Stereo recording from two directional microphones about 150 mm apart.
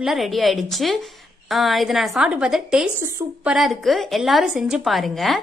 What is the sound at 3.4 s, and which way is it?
A woman's voice, centre (ahead or behind).